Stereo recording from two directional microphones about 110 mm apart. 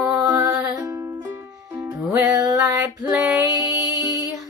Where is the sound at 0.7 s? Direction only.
30° right (ahead or behind).